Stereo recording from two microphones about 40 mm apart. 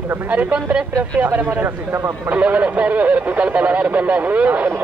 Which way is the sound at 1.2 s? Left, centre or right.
Right.